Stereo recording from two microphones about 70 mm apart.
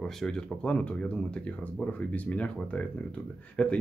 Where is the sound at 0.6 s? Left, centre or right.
Centre.